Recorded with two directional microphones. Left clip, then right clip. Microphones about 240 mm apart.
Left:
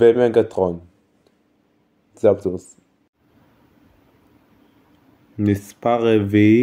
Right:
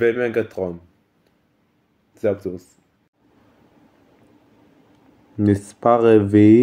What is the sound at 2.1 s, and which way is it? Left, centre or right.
Speech, centre.